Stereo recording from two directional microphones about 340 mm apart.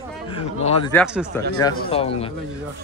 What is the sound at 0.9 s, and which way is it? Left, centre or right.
Speech, centre.